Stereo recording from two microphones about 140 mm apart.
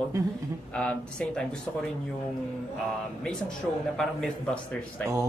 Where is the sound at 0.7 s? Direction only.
5° left (ahead or behind).